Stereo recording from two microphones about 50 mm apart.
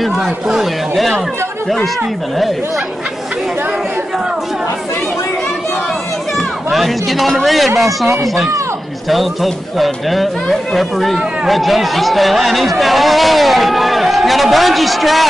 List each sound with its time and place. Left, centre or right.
0.5 s speech: centre
6.3 s speech: centre
9.1 s speech: centre